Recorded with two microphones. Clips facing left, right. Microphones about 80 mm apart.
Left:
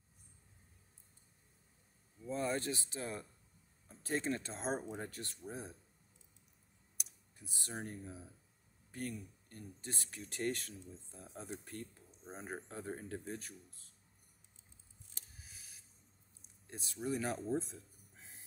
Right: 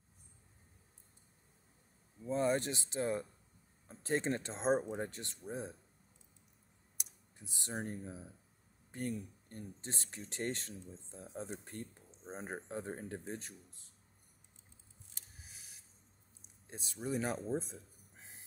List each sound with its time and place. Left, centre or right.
2.2 s speech: right
7.3 s speech: right
9.5 s speech: right
16.6 s speech: centre